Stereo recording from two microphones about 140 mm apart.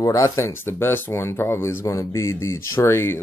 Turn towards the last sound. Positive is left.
turn(degrees=15)  # may be behind; listen again after turning